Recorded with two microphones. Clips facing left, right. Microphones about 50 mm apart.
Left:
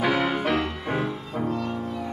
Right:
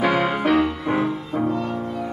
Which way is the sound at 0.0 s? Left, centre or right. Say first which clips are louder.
Right 4 dB; centre.